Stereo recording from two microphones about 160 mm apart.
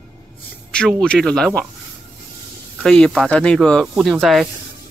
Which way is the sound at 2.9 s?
5° left (ahead or behind).